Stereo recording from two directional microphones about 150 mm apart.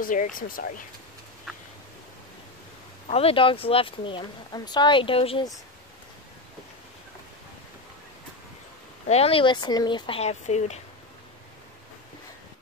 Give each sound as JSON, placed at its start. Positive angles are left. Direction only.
{"t": 0.0, "sound": "speech", "side_deg": 65}
{"t": 3.1, "sound": "speech", "side_deg": 40}
{"t": 9.0, "sound": "speech", "side_deg": 45}
{"t": 10.4, "sound": "speech", "side_deg": 50}